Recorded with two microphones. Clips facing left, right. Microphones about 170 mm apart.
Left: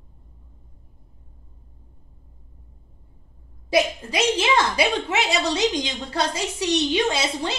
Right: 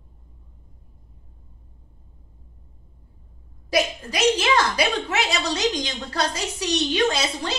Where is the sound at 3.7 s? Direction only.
25° left (ahead or behind).